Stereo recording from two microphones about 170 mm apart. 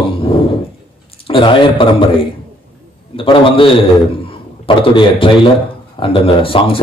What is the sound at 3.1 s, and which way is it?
A man's voice, 30° left (ahead or behind).